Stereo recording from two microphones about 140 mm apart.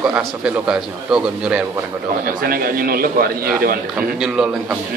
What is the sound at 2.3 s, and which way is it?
A man's voice, 90° right.